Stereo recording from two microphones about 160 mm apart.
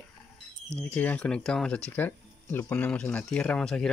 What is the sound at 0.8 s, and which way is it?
Speech, 10° left (ahead or behind).